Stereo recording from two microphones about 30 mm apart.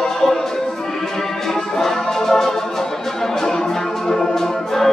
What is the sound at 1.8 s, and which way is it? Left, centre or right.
Music, centre.